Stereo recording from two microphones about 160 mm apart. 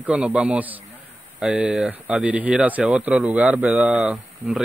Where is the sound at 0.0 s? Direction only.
5° right (ahead or behind).